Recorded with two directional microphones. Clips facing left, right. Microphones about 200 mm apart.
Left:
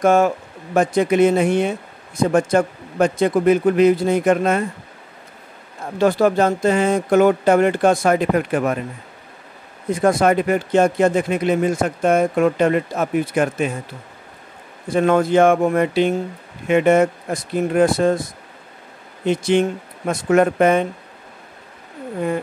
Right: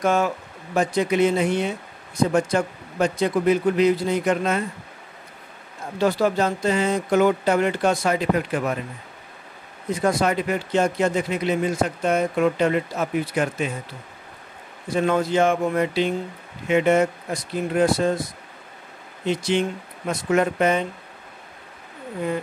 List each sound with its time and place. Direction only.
0.0 s speech: 50° left (ahead or behind)
5.9 s speech: 50° left (ahead or behind)
9.9 s speech: 50° left (ahead or behind)
14.9 s speech: 55° left (ahead or behind)
19.2 s speech: 50° left (ahead or behind)